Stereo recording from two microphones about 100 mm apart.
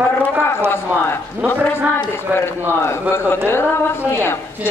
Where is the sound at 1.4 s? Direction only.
15° right (ahead or behind).